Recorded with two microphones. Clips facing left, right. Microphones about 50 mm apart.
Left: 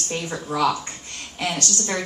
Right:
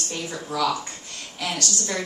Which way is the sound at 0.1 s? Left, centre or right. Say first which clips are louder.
Left 4 dB; left.